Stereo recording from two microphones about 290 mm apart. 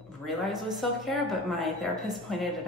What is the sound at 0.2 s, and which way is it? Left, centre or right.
A woman's voice, centre.